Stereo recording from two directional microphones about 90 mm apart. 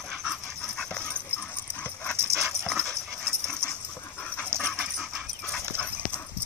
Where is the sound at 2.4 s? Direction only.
Centre (ahead or behind).